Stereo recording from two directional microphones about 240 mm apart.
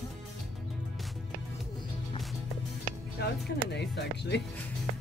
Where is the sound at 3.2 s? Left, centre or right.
Left.